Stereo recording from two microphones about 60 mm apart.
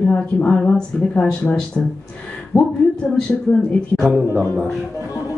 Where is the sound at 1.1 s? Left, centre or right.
Left.